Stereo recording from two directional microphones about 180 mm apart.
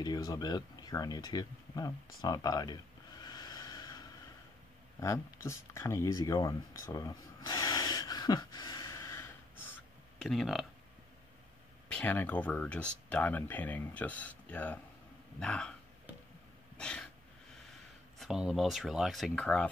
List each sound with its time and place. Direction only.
0.0 s speech: 20° left (ahead or behind)
2.2 s snort: 20° left (ahead or behind)
5.0 s speech: 15° left (ahead or behind)
10.2 s speech: centre (ahead or behind)
11.9 s speech: 10° left (ahead or behind)
16.7 s sneeze: 5° left (ahead or behind)
18.2 s speech: centre (ahead or behind)